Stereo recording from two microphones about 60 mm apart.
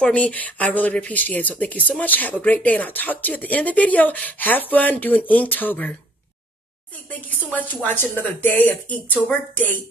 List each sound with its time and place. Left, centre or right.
0.0 s speech: left
7.5 s speech: left